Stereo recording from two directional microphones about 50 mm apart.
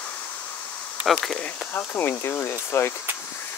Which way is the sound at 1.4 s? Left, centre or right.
Left.